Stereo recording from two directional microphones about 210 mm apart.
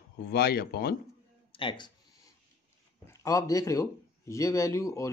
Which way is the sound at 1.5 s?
25° left (ahead or behind).